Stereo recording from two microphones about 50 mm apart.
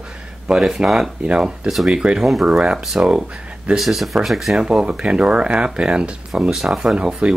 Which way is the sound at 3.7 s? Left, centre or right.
Centre.